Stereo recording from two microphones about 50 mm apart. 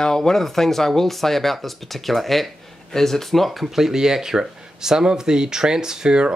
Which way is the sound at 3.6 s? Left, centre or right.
Centre.